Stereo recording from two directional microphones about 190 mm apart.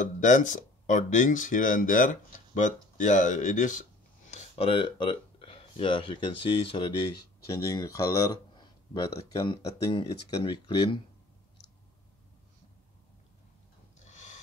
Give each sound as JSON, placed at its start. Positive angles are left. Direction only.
{"t": 0.0, "sound": "speech", "side_deg": 40}
{"t": 4.3, "sound": "speech", "side_deg": 30}
{"t": 7.5, "sound": "speech", "side_deg": 15}
{"t": 14.0, "sound": "a sound", "side_deg": 40}